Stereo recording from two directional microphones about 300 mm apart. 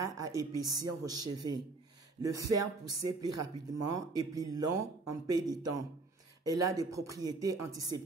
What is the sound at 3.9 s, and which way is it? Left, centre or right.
Speech, centre.